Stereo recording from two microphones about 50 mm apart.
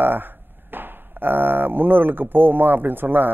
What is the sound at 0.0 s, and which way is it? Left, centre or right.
Speech, right.